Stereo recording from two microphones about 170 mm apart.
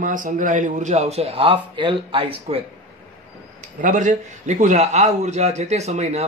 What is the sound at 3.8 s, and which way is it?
Speech, 50° right (ahead or behind).